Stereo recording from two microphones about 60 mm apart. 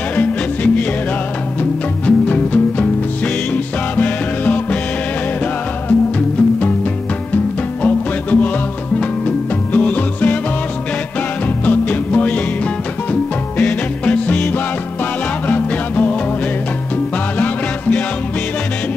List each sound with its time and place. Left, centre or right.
1.6 s music: left
5.9 s music: left
7.8 s music: left
9.7 s music: left
11.4 s music: left
17.4 s music: left